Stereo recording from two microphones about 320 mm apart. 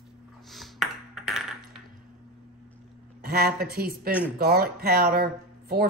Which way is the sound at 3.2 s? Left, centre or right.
Right.